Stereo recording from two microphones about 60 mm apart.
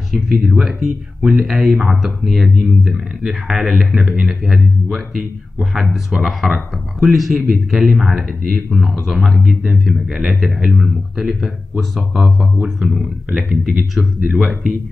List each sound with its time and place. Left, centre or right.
0.1 s speech: centre
12.6 s speech: centre